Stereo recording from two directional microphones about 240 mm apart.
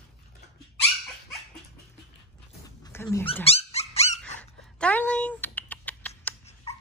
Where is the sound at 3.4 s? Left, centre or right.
Left.